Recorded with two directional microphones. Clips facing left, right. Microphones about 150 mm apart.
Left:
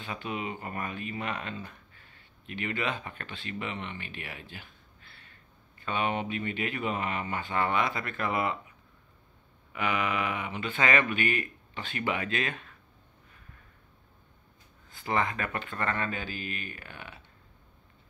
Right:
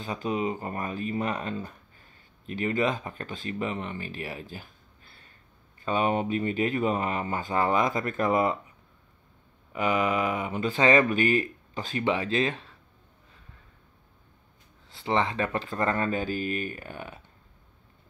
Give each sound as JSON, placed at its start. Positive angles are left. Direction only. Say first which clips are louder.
{"t": 0.0, "sound": "speech", "louder": "right 6 dB", "side_deg": -35}
{"t": 5.9, "sound": "speech", "louder": "right 5 dB", "side_deg": -40}
{"t": 9.7, "sound": "speech", "louder": "right 5 dB", "side_deg": -40}
{"t": 15.0, "sound": "speech", "louder": "right 4 dB", "side_deg": -30}